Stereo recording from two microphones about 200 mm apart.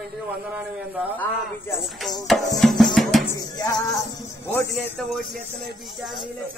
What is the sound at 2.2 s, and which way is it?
Music, centre (ahead or behind).